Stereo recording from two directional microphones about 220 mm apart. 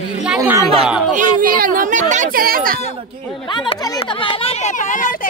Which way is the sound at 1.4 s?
40° right (ahead or behind).